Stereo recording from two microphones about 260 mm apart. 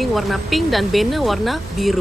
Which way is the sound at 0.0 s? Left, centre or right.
Centre.